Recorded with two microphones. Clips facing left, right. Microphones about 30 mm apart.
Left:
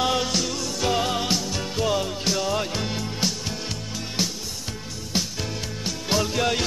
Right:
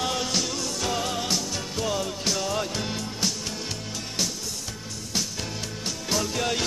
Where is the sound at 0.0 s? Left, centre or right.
Centre.